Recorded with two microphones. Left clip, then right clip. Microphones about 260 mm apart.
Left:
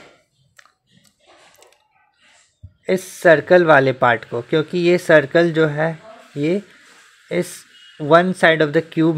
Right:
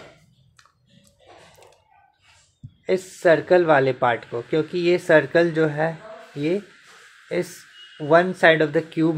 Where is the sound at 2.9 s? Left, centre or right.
Left.